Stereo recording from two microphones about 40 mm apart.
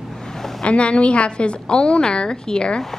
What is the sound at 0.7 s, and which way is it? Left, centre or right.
A woman's voice, left.